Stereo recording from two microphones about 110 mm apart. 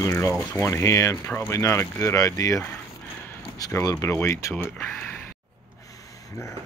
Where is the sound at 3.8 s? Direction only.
25° left (ahead or behind).